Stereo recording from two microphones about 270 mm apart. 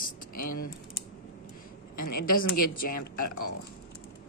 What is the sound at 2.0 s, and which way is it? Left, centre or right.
Speech, left.